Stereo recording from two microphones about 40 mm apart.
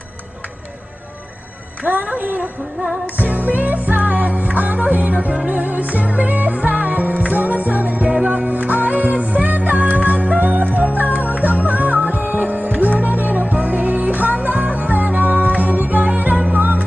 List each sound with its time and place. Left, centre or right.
1.8 s speech: right
3.2 s music: right